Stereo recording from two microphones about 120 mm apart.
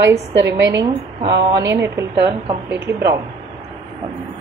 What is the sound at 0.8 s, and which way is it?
A woman's voice, 35° right (ahead or behind).